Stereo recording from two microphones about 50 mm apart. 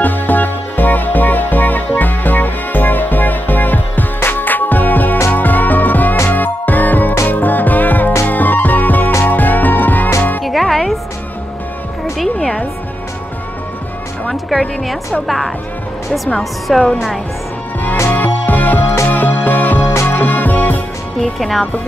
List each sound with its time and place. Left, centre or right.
0.0 s music: left
10.4 s music: centre
12.4 s music: centre
15.2 s music: centre
16.3 s a woman's voice: centre
18.1 s music: left
21.2 s speech: centre